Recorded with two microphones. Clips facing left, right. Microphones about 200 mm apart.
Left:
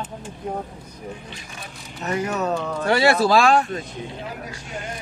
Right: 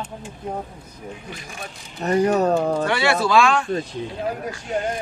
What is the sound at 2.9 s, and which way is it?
Speech, 35° left (ahead or behind).